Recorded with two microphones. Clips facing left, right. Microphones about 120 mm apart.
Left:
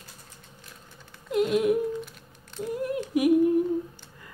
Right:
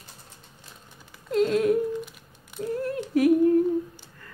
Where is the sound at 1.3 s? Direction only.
15° left (ahead or behind).